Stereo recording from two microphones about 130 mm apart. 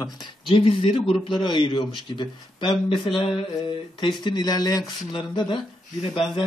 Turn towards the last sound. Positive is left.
turn(degrees=40)  # may be behind; listen again after turning